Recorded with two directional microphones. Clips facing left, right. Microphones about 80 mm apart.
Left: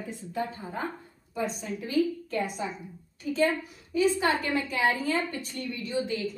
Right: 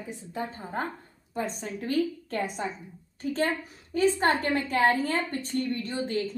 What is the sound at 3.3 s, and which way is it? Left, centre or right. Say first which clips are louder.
A woman's voice: left 3 dB; right.